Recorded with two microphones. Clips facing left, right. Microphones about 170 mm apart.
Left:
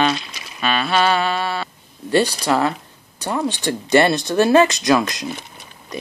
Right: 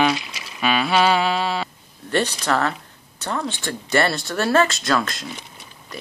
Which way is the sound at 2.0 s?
10° left (ahead or behind).